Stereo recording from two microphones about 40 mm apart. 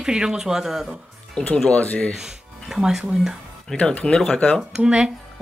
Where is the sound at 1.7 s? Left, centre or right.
Left.